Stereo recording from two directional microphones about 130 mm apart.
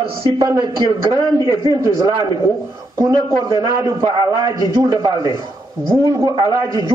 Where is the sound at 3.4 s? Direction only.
35° right (ahead or behind).